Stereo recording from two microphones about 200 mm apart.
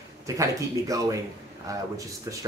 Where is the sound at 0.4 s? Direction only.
15° right (ahead or behind).